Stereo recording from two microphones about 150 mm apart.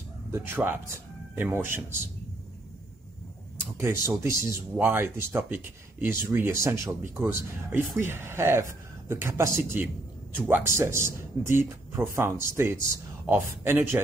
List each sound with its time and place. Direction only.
0.3 s speech: 15° right (ahead or behind)
3.7 s speech: 15° right (ahead or behind)